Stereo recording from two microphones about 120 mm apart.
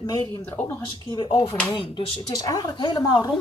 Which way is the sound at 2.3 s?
30° left (ahead or behind).